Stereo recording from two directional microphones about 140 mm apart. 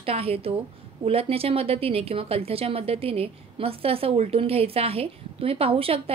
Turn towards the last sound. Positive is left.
turn(degrees=-45)  # may be behind; listen again after turning